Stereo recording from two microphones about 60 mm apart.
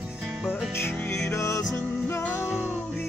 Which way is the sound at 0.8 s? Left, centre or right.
Left.